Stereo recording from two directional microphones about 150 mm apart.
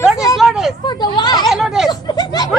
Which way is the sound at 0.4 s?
Centre (ahead or behind).